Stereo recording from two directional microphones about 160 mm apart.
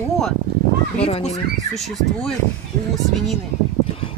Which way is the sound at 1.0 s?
40° left (ahead or behind).